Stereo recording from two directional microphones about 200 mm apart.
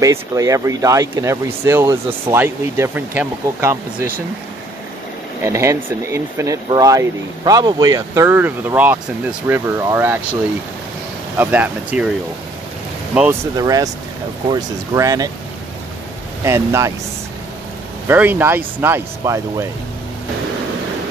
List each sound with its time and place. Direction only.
0.0 s speech: 15° right (ahead or behind)
5.4 s speech: 15° right (ahead or behind)
11.3 s speech: 10° right (ahead or behind)
13.1 s speech: 5° right (ahead or behind)
13.6 s speech: 15° right (ahead or behind)
16.4 s speech: 15° right (ahead or behind)
18.0 s speech: 10° right (ahead or behind)